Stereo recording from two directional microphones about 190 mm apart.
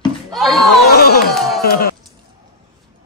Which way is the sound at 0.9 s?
55° left (ahead or behind).